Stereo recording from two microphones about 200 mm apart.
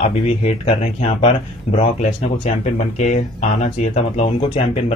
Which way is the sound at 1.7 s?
35° left (ahead or behind).